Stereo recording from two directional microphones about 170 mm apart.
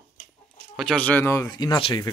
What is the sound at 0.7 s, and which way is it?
Speech, 5° left (ahead or behind).